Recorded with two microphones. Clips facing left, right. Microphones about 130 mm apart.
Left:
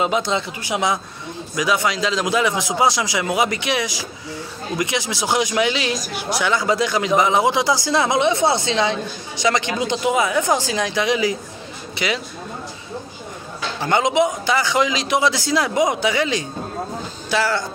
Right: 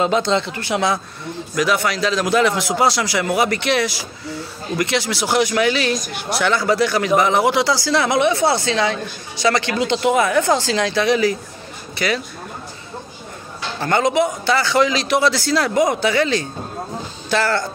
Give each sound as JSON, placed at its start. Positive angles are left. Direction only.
{"t": 0.0, "sound": "a man's voice", "side_deg": 10}
{"t": 13.7, "sound": "a man's voice", "side_deg": 15}